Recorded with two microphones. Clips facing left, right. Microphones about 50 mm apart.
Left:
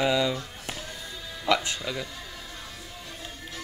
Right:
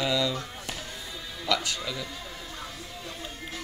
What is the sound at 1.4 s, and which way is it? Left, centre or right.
Music, left.